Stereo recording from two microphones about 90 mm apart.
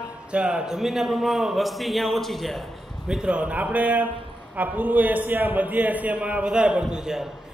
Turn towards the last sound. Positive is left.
turn(degrees=-5)  # may be behind; listen again after turning